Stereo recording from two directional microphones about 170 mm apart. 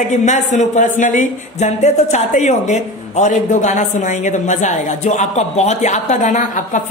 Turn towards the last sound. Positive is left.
turn(degrees=45)  # may be behind; listen again after turning